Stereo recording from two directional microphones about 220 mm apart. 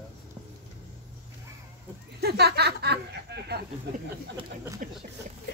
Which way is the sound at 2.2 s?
45° right (ahead or behind).